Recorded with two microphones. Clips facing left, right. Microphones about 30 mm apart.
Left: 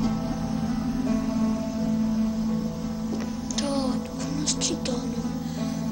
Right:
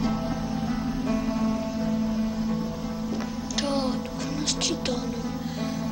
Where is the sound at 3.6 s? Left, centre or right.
Centre.